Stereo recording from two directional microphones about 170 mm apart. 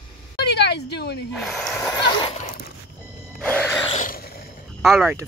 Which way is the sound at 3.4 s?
10° left (ahead or behind).